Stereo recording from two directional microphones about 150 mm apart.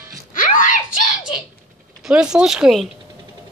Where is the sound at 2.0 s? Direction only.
5° right (ahead or behind).